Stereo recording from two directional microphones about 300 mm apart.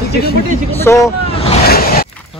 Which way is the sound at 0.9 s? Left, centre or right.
Centre.